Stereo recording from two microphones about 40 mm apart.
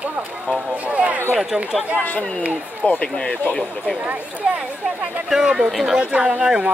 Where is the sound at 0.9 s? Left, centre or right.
Right.